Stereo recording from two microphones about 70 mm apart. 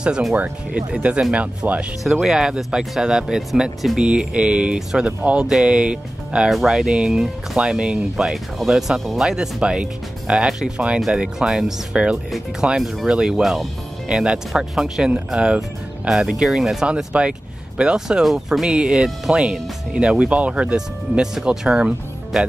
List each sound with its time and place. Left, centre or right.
0.3 s speech: centre
2.0 s speech: centre
20.7 s speech: centre